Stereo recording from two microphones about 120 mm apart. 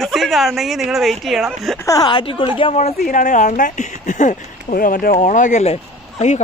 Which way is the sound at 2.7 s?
80° left.